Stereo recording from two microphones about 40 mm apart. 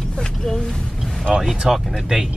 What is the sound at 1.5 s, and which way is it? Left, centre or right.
Speech, centre.